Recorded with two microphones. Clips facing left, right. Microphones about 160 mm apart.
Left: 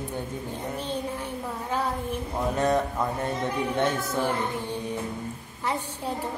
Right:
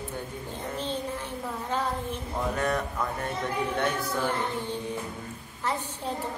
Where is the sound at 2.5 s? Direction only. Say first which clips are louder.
Left 6 dB; 25° left (ahead or behind).